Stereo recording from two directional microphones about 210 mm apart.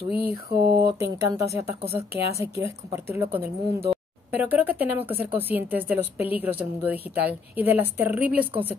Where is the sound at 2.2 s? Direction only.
30° left (ahead or behind).